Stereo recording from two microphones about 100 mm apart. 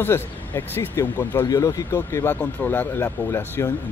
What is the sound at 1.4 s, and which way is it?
Speech, 35° left (ahead or behind).